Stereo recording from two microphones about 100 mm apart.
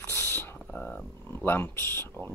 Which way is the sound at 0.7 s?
5° left (ahead or behind).